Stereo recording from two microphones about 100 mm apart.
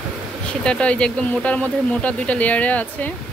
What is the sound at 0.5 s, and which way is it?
Speech, 10° left (ahead or behind).